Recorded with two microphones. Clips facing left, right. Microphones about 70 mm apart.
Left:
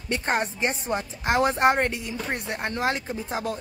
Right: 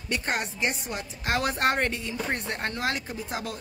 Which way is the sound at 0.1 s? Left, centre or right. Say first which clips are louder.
Left 4 dB; left.